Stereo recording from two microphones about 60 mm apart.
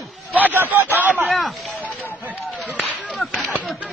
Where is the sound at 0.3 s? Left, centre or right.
Right.